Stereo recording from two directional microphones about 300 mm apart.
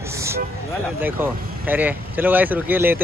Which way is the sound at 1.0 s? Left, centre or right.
Centre.